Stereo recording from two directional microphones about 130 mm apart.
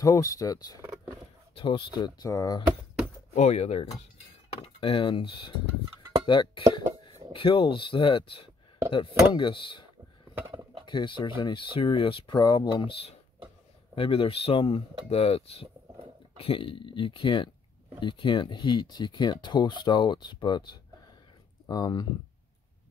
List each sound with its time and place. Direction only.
0.0 s speech: 25° left (ahead or behind)
1.5 s speech: 40° left (ahead or behind)
3.3 s speech: 60° left (ahead or behind)
4.6 s speech: 45° left (ahead or behind)
10.3 s a sound: 15° right (ahead or behind)
10.9 s speech: 35° left (ahead or behind)
13.9 s speech: 45° left (ahead or behind)